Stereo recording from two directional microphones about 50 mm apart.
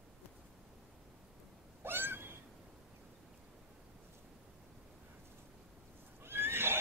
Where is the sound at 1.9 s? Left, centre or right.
Right.